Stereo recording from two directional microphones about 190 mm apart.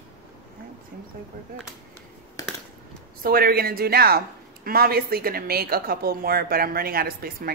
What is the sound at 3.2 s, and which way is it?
A woman's voice, 50° right (ahead or behind).